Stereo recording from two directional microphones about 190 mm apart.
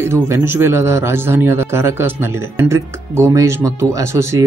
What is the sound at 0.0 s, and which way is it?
A man's voice, 15° right (ahead or behind).